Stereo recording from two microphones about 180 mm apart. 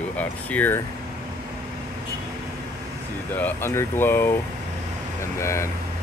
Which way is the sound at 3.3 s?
10° left (ahead or behind).